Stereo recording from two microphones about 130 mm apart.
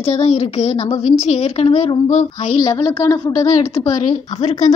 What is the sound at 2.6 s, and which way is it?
A woman's voice, 35° left (ahead or behind).